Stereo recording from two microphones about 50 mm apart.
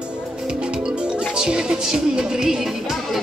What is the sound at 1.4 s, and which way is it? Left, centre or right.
Music, centre.